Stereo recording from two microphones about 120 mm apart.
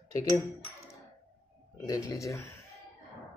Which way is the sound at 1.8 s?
30° left (ahead or behind).